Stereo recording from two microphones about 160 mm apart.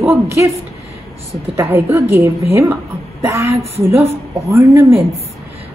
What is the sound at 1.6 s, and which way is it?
A woman's voice, 15° right (ahead or behind).